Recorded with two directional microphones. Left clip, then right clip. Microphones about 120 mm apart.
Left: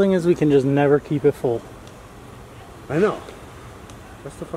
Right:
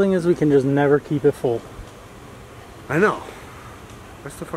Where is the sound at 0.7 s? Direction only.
25° left (ahead or behind).